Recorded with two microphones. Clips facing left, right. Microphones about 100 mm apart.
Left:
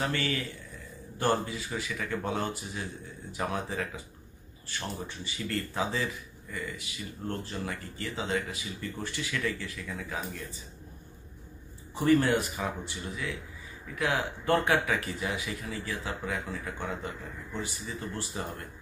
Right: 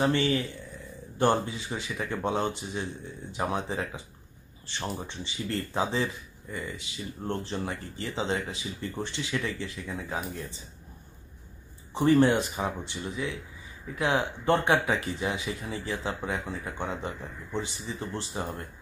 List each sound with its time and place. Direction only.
0.0 s speech: 25° right (ahead or behind)
11.9 s speech: 25° right (ahead or behind)